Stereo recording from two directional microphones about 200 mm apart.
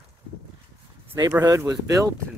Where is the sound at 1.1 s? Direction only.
15° right (ahead or behind).